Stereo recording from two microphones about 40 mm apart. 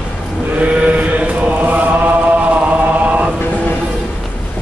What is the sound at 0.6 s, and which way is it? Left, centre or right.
Chant, right.